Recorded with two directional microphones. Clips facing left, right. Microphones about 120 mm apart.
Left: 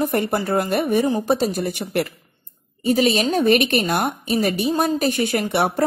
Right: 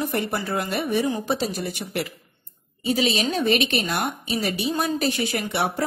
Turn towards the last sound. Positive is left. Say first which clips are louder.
# left 5 dB
turn(degrees=55)  # may be behind; listen again after turning